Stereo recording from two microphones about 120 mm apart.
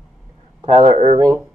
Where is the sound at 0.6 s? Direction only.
60° right (ahead or behind).